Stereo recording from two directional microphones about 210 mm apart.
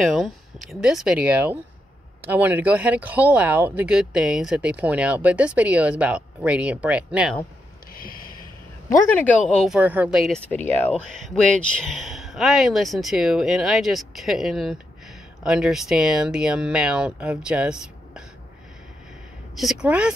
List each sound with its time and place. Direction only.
0.0 s speech: centre (ahead or behind)
7.9 s a sound: 45° left (ahead or behind)
8.8 s speech: 5° left (ahead or behind)
9.8 s speech: 5° right (ahead or behind)
19.5 s speech: centre (ahead or behind)